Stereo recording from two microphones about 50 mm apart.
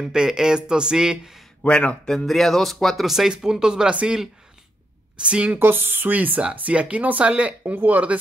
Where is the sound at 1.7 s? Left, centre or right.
Left.